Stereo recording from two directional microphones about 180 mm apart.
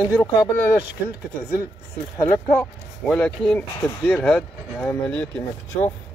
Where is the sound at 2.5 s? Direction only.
5° left (ahead or behind).